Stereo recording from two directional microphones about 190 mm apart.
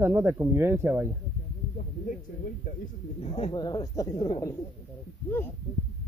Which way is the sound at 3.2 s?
30° left (ahead or behind).